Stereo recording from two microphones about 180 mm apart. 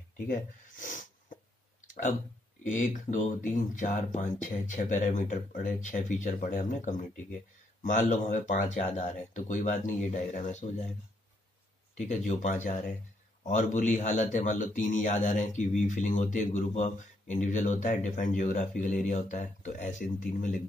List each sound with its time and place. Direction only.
0.3 s a sound: 50° left (ahead or behind)
2.7 s speech: 45° left (ahead or behind)
12.1 s speech: 40° left (ahead or behind)